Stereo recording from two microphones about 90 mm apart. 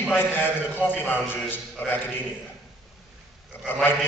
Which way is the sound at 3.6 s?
20° left (ahead or behind).